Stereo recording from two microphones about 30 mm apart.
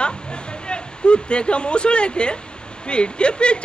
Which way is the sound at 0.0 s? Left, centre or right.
Left.